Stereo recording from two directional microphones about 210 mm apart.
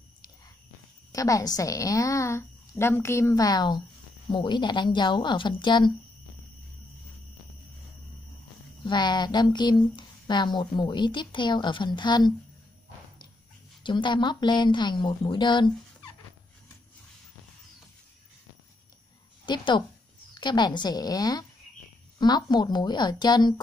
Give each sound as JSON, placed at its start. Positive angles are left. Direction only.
{"t": 1.1, "sound": "a woman's voice", "side_deg": 15}
{"t": 8.8, "sound": "speech", "side_deg": 20}
{"t": 13.8, "sound": "speech", "side_deg": 20}
{"t": 19.4, "sound": "a woman's voice", "side_deg": 20}